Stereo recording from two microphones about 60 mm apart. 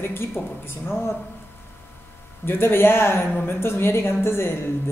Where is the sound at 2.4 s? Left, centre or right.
Left.